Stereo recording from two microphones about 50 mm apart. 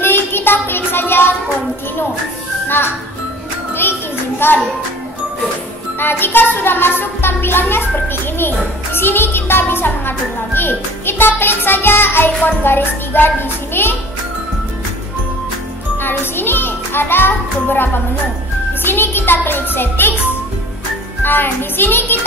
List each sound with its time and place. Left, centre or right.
0.0 s child singing: left
4.4 s music: left
5.9 s a woman's voice: left
16.0 s a woman's voice: left
21.2 s a woman's voice: left